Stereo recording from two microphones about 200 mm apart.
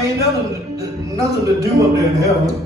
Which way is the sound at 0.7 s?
15° right (ahead or behind).